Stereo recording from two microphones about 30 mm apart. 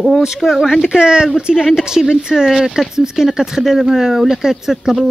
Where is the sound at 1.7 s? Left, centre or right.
Centre.